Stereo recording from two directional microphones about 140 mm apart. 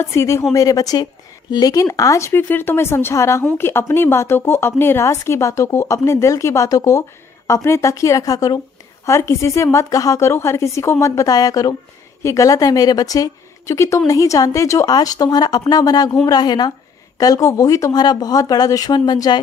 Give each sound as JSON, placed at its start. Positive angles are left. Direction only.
{"t": 0.0, "sound": "speech", "side_deg": 20}